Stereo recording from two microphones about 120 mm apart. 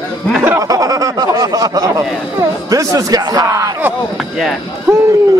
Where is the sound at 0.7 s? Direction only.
30° right (ahead or behind).